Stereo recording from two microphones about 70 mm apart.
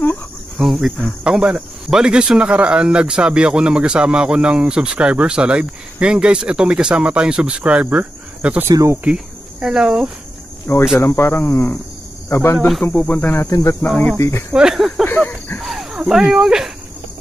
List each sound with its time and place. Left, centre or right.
0.6 s speech: centre; by 8.6 s right
8.7 s speech: right
9.1 s cricket: centre
11.0 s speech: left
13.0 s speech: left
13.5 s speech: left
14.1 s speech: left
14.5 s speech: centre
15.2 s a sound: left
15.6 s cricket: centre
16.1 s speech: centre